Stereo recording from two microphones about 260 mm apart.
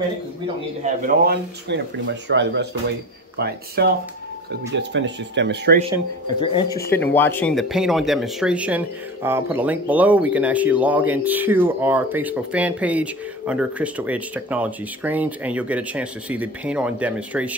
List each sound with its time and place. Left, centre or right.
1.0 s speech: right
6.2 s speech: centre
6.9 s speech: centre